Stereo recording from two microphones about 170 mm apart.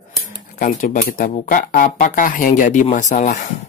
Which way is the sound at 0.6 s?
50° left (ahead or behind).